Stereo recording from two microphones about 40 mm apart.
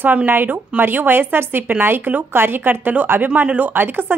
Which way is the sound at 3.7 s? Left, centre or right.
Right.